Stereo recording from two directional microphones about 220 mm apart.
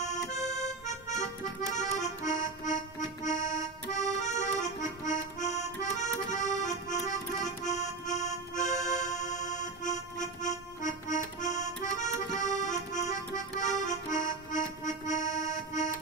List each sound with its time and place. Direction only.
0.5 s music: 30° left (ahead or behind)
1.8 s accordion: 35° left (ahead or behind)
7.6 s music: 35° left (ahead or behind)